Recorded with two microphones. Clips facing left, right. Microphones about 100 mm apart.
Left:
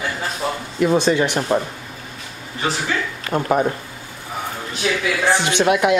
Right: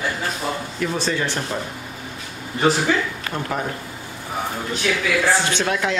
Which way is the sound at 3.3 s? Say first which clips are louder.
Left 10 dB; 25° left (ahead or behind).